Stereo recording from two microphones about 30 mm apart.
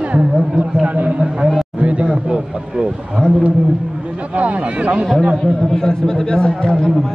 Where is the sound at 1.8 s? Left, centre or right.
Right.